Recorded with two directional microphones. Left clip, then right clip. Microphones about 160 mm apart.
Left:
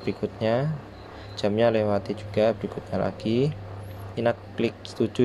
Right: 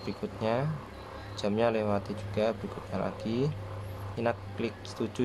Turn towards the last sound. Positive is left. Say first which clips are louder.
# left 9 dB
turn(degrees=20)  # may be behind; listen again after turning